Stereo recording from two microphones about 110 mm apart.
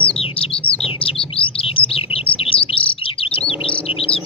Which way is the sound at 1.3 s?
55° left (ahead or behind).